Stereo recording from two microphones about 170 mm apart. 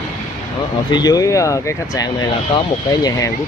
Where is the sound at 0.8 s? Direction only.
25° left (ahead or behind).